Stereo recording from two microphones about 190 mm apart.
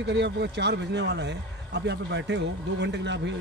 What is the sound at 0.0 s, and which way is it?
Speech, 65° right (ahead or behind).